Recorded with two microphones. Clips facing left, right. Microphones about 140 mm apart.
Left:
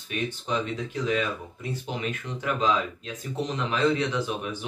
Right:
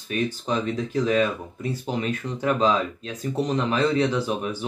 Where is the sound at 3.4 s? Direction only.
35° right (ahead or behind).